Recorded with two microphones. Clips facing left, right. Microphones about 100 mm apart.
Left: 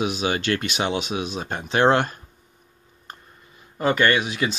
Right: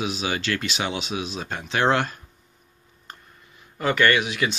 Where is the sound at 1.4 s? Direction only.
40° left (ahead or behind).